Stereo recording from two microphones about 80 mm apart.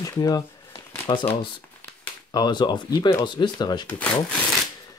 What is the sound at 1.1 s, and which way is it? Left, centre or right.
Speech, left.